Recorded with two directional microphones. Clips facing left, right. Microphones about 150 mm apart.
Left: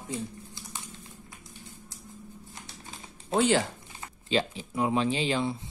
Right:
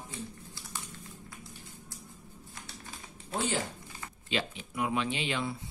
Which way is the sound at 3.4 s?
85° left.